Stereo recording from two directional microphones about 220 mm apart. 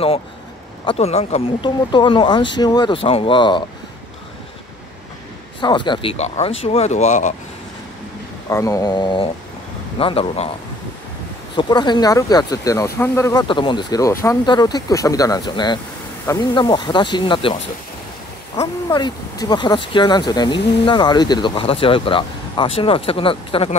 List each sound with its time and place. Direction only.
0.8 s speech: 30° left (ahead or behind)
5.6 s speech: 20° left (ahead or behind)
8.5 s speech: 15° left (ahead or behind)
11.5 s speech: 20° left (ahead or behind)
18.6 s speech: 15° left (ahead or behind)